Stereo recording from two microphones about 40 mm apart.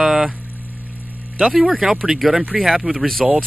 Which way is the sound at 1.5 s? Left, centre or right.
Centre.